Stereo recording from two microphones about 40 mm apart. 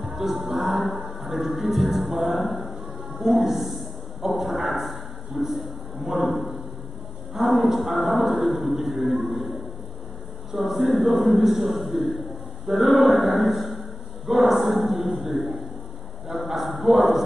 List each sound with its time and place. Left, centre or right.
0.1 s music: centre
3.3 s speech: centre
6.0 s music: centre
9.2 s a sound: centre
10.6 s music: centre
12.7 s a sound: centre
16.8 s music: centre